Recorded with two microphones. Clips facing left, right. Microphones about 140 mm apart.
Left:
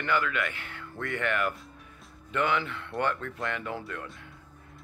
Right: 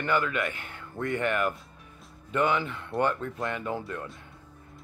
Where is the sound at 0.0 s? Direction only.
20° right (ahead or behind).